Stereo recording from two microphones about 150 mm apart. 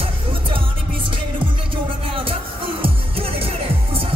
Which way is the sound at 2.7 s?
40° right (ahead or behind).